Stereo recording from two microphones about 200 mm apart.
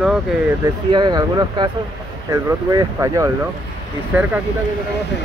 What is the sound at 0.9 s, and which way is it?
Speech, 20° right (ahead or behind).